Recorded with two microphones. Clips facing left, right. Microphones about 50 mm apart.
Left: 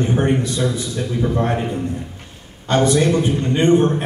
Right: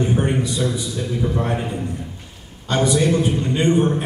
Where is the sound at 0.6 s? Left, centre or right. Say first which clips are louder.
Left 2 dB; left.